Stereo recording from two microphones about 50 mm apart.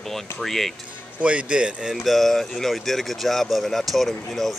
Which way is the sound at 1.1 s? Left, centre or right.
Right.